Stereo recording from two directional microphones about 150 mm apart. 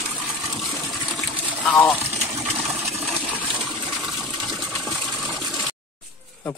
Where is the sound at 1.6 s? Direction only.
10° left (ahead or behind).